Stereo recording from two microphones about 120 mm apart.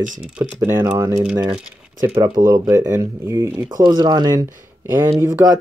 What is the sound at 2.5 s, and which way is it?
Speech, 25° right (ahead or behind).